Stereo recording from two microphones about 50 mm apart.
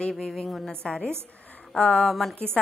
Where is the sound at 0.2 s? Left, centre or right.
Centre.